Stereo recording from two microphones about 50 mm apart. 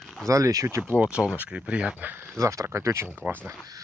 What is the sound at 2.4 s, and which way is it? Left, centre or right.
Speech, right.